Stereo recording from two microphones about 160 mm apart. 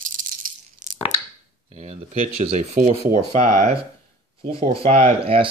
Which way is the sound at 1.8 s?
40° right (ahead or behind).